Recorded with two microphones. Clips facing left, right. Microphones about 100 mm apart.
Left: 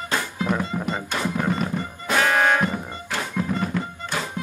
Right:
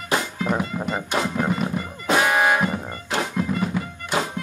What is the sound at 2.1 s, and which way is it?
Music, 15° right (ahead or behind).